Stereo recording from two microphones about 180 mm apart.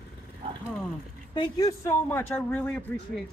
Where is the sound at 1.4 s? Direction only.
20° left (ahead or behind).